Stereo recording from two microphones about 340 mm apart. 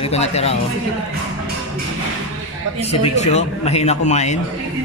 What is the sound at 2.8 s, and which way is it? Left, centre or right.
A man's voice, centre.